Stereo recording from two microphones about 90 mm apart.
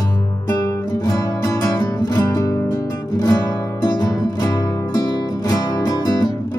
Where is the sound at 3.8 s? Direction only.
50° left (ahead or behind).